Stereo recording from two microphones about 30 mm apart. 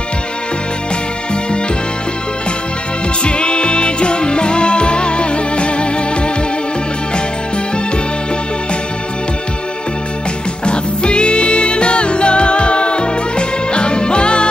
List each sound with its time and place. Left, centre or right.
3.3 s music: left
10.6 s music: left